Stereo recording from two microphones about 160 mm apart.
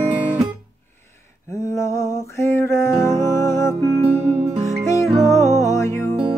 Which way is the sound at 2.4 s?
15° left (ahead or behind).